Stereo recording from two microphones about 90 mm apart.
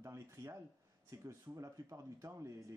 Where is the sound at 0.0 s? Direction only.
35° right (ahead or behind).